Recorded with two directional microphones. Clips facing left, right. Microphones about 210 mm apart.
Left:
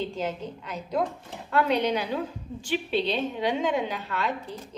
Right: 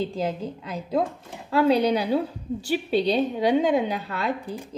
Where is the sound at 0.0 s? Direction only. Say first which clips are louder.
Right 3 dB; 35° right (ahead or behind).